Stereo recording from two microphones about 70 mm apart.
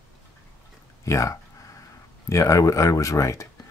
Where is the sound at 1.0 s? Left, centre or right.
Left.